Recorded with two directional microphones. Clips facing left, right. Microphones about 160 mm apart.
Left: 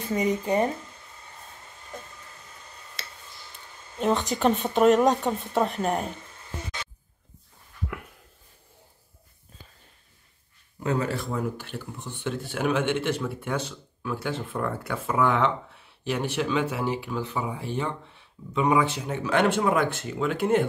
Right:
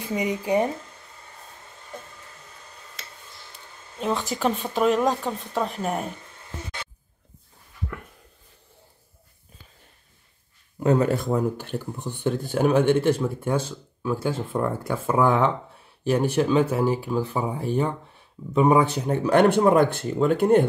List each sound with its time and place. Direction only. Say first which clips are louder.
0.0 s speech: left 1 dB; 10° right (ahead or behind)
4.0 s speech: left 2 dB; centre (ahead or behind)
10.8 s speech: right 6 dB; 50° right (ahead or behind)
14.8 s speech: right 4 dB; 45° right (ahead or behind)
15.0 s speech: right 3 dB; 35° right (ahead or behind)